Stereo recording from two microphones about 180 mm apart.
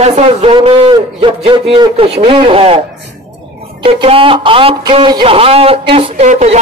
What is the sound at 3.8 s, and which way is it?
Speech, 30° right (ahead or behind).